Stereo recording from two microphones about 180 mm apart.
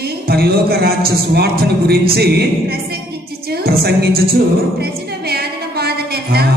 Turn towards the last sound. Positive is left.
turn(degrees=-60)  # may be behind; listen again after turning